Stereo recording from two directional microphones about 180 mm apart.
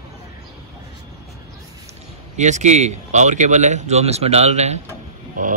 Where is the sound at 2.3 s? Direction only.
40° right (ahead or behind).